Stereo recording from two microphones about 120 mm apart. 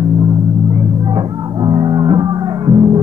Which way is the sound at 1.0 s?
35° right (ahead or behind).